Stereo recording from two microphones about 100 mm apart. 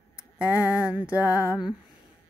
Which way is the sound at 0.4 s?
30° left (ahead or behind).